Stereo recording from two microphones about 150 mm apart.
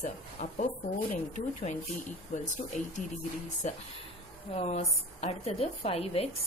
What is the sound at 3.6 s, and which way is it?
A woman's voice, 50° left (ahead or behind).